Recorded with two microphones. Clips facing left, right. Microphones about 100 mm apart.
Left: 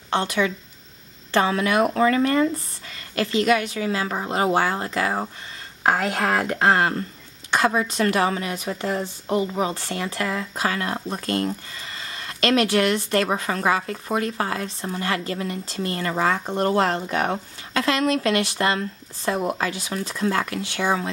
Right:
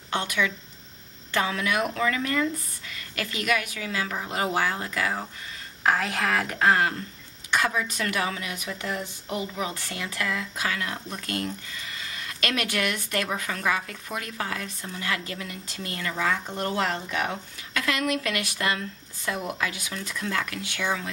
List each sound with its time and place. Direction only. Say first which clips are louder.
0.1 s a woman's voice: left 5 dB; 30° left (ahead or behind)